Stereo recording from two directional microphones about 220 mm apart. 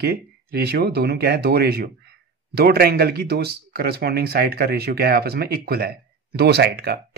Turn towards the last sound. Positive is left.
turn(degrees=-45)  # may be behind; listen again after turning